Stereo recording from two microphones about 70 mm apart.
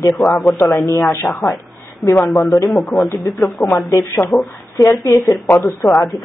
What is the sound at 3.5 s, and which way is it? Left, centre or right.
Speech, left.